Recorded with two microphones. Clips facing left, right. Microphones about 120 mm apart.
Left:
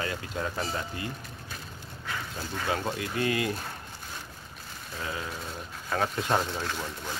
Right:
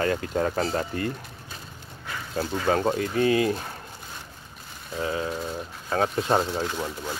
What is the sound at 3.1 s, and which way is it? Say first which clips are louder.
Speech: right 6 dB; 30° right (ahead or behind).